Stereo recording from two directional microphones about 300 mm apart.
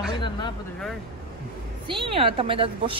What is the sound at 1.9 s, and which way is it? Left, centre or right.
Speech, centre.